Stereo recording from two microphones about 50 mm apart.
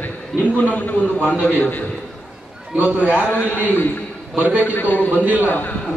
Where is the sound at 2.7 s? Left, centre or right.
Right.